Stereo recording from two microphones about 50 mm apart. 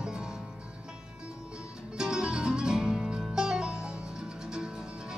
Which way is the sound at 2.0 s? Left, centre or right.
Centre.